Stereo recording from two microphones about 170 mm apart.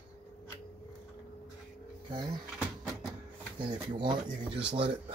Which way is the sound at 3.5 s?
30° right (ahead or behind).